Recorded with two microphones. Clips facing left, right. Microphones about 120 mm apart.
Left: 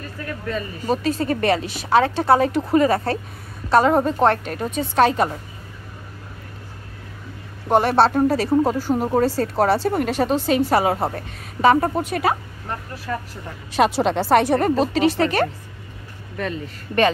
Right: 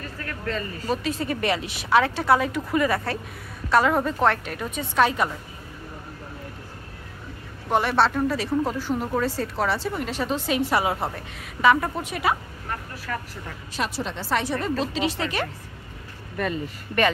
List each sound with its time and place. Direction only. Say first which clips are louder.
0.2 s a man's voice: left 3 dB; 15° left (ahead or behind)
0.8 s speech: left 6 dB; 35° left (ahead or behind)
7.6 s speech: left 5 dB; 35° left (ahead or behind)
12.6 s speech: left 4 dB; 25° left (ahead or behind)
13.7 s speech: left 11 dB; 80° left; by 15.4 s 45° left (ahead or behind)